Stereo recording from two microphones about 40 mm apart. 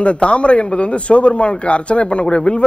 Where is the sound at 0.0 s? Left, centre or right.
Left.